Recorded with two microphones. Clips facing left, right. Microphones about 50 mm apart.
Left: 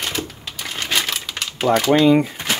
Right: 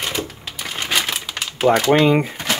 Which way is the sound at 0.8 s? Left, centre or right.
Centre.